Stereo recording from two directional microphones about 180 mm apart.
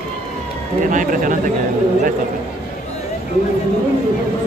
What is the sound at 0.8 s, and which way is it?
Speech, 45° right (ahead or behind).